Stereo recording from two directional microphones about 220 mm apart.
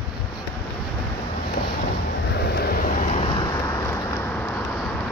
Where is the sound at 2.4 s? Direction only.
45° left (ahead or behind).